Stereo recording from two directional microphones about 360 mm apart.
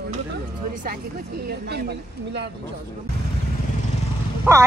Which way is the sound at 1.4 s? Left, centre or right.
Right.